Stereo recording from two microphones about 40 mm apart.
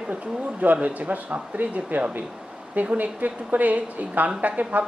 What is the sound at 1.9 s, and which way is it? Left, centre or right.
A woman's voice, right.